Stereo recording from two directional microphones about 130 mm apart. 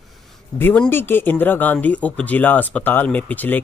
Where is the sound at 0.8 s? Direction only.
15° left (ahead or behind).